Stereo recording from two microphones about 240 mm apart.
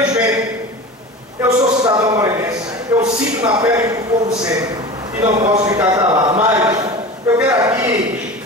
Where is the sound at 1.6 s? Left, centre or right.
Centre.